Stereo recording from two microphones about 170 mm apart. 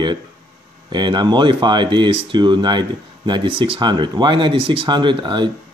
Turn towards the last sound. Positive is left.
turn(degrees=-30)  # may be behind; listen again after turning